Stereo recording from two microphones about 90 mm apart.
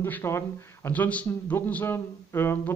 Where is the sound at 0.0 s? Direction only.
25° left (ahead or behind).